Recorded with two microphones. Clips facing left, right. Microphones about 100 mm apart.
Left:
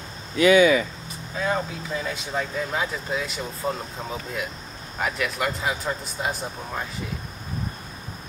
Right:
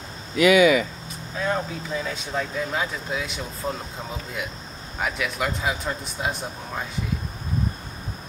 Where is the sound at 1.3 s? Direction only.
Centre (ahead or behind).